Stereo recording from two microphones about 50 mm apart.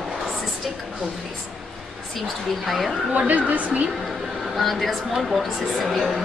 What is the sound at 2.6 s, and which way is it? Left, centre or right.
Speech, centre.